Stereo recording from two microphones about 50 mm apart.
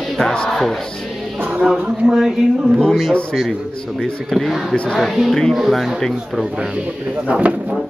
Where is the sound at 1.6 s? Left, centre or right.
Centre.